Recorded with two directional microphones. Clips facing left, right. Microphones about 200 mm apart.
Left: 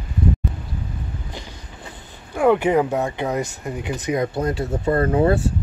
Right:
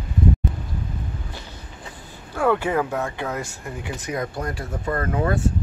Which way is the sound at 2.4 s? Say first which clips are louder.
Left 4 dB; 15° left (ahead or behind).